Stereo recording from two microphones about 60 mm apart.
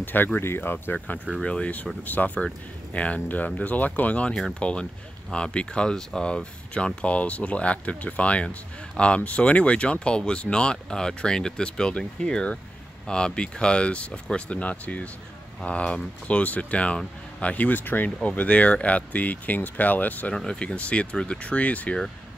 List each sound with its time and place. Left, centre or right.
0.0 s speech: left
1.4 s speech: centre
20.3 s speech: centre